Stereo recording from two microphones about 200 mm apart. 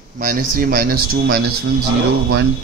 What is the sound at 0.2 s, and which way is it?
Speech, 45° right (ahead or behind).